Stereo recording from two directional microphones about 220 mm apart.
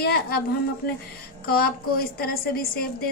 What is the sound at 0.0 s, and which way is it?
Speech, 45° left (ahead or behind).